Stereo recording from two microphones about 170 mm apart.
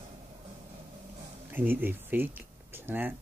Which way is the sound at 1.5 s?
10° right (ahead or behind).